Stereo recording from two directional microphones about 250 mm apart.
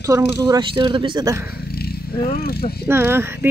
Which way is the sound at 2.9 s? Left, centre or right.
Centre.